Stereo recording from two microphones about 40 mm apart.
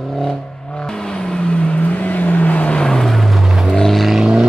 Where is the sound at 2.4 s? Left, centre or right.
Left.